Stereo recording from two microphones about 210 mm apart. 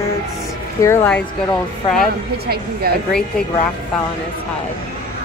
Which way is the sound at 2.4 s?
50° right (ahead or behind).